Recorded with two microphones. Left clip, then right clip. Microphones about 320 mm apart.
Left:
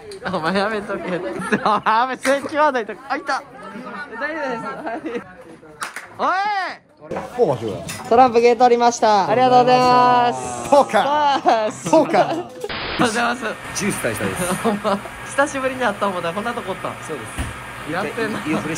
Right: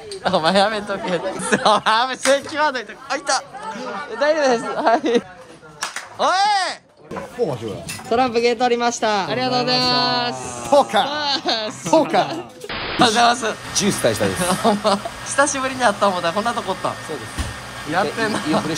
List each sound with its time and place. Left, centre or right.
0.2 s speech: centre
4.2 s speech: centre
6.1 s speech: centre
7.4 s speech: centre
8.1 s speech: centre
17.9 s speech: centre